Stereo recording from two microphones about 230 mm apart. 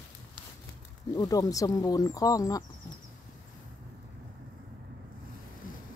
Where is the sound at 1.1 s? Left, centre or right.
Centre.